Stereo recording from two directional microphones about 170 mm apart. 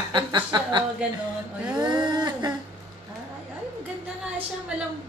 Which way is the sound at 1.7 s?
25° right (ahead or behind).